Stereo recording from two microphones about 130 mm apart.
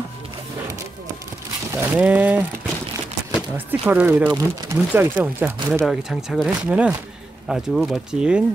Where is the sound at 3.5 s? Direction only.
15° right (ahead or behind).